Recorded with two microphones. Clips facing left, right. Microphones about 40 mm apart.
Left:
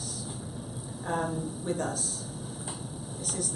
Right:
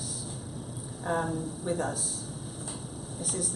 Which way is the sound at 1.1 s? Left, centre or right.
Centre.